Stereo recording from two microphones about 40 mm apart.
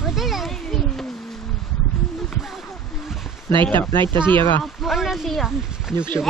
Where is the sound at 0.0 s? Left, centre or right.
Centre.